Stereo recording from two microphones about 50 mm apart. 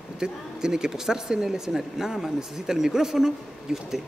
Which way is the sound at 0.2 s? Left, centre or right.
Centre.